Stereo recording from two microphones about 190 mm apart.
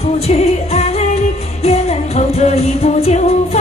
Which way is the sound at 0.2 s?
35° left (ahead or behind).